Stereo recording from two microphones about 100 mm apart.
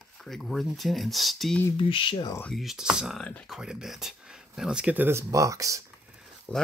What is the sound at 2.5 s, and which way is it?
Speech, centre (ahead or behind).